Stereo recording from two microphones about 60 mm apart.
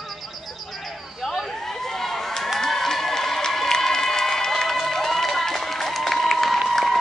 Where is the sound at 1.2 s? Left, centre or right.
Centre.